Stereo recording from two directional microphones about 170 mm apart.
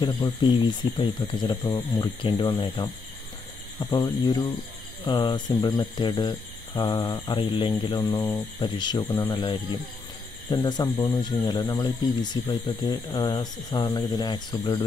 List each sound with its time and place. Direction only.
0.0 s speech: 25° left (ahead or behind)